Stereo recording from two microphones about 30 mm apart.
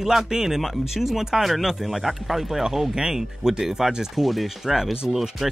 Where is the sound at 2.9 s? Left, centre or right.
Right.